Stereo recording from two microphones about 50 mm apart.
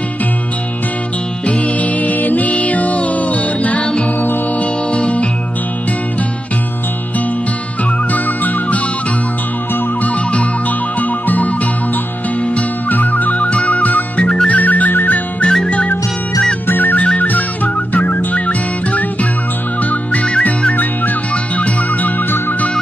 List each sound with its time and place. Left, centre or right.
1.5 s music: left
11.0 s music: left
12.5 s music: left
15.4 s music: centre
16.6 s music: left